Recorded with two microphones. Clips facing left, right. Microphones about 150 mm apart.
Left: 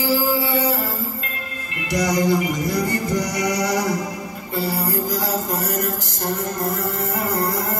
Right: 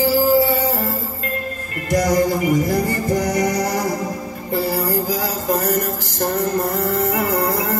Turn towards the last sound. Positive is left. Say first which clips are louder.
# right 4 dB
turn(degrees=-65)  # may be behind; listen again after turning